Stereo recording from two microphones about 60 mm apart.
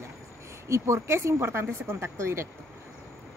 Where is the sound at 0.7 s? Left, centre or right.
Right.